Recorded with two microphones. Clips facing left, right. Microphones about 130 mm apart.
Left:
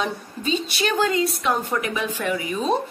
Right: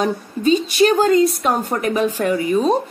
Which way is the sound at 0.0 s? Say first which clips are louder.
Right 8 dB; 40° right (ahead or behind).